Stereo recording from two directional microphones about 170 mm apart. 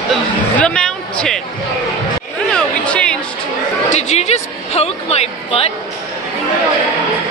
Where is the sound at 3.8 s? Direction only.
40° left (ahead or behind).